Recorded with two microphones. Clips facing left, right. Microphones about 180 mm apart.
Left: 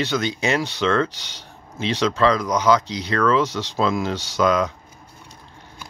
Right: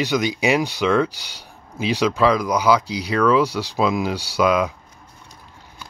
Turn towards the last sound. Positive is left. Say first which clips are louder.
# right 1 dB
turn(degrees=-10)  # may be behind; listen again after turning